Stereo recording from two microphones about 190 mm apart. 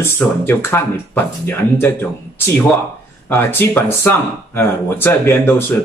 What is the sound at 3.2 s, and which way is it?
A man's voice, 10° left (ahead or behind).